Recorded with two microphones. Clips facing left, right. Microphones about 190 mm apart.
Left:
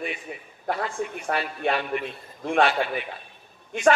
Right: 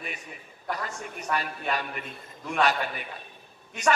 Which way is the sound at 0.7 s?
40° right (ahead or behind).